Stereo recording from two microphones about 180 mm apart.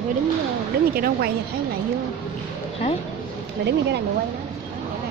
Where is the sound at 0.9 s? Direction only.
55° right (ahead or behind).